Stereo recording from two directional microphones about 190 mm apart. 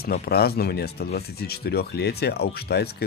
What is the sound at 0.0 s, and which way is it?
Speech, 55° left (ahead or behind).